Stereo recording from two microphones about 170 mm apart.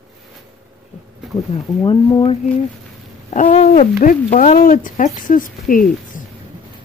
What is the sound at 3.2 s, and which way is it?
Speech, 45° left (ahead or behind).